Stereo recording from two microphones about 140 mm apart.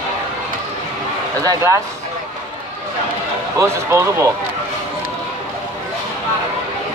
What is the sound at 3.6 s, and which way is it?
Speech, 20° right (ahead or behind).